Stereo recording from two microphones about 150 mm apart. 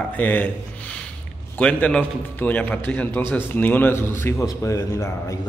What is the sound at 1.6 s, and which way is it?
A man's voice, 10° left (ahead or behind).